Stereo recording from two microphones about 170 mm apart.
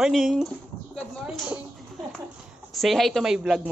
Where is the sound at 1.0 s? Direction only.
Centre (ahead or behind).